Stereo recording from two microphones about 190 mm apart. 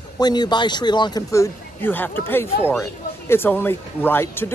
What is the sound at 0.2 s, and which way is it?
Speech, 20° left (ahead or behind).